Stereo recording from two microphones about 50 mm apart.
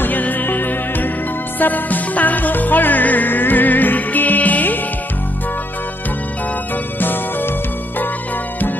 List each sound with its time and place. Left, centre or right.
0.0 s music: left
7.0 s music: left